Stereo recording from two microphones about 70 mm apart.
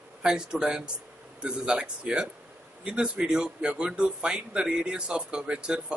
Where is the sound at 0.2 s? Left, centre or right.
Centre.